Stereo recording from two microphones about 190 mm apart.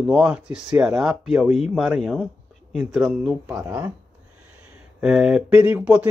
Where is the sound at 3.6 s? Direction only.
20° right (ahead or behind).